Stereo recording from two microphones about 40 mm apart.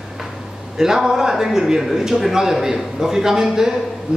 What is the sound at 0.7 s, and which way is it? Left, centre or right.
A man's voice, centre.